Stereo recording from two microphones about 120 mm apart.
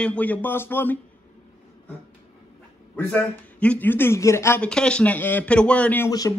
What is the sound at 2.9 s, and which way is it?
A man's voice, 10° left (ahead or behind).